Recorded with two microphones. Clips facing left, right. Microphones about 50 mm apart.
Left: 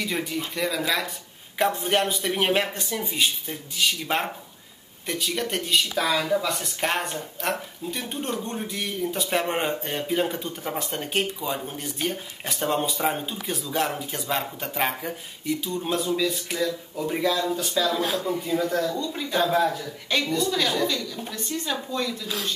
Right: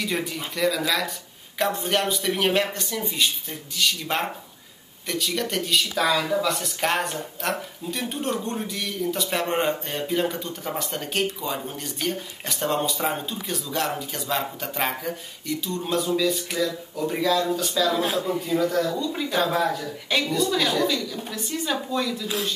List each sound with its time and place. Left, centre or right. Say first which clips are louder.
0.0 s speech: even; centre
18.9 s speech: right 1 dB; centre